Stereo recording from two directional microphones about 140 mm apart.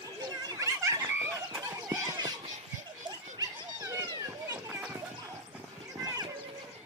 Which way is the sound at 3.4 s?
25° right (ahead or behind).